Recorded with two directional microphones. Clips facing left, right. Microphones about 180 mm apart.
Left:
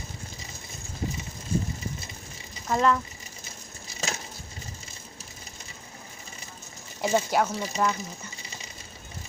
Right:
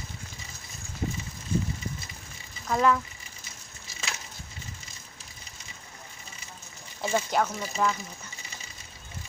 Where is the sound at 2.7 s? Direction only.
5° right (ahead or behind).